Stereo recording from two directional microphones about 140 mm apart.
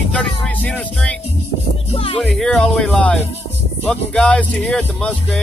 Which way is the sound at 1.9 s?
40° left (ahead or behind).